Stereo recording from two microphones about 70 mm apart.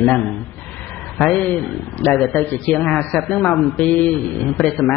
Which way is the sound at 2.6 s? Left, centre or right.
Centre.